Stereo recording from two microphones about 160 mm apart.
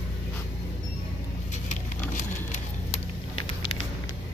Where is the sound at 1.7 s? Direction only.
50° left (ahead or behind).